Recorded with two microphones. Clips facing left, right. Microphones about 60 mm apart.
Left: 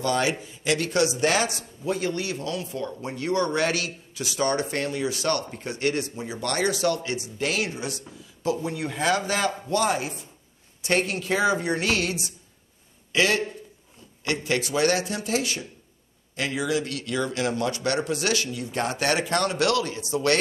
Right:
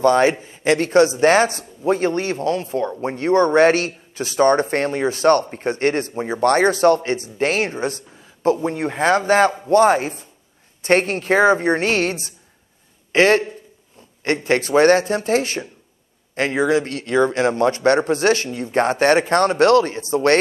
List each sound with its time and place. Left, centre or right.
0.0 s a man's voice: right